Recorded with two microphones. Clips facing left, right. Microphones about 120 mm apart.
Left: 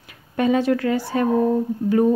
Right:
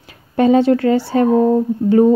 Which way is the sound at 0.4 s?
30° right (ahead or behind).